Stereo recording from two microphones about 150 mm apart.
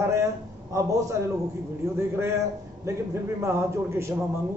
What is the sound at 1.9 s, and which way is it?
A man's voice, 15° right (ahead or behind).